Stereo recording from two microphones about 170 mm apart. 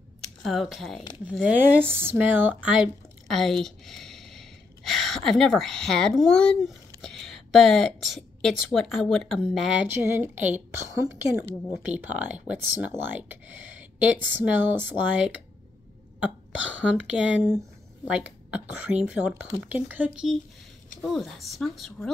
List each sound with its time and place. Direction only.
0.4 s speech: centre (ahead or behind)
9.8 s speech: 15° right (ahead or behind)
16.7 s speech: 5° right (ahead or behind)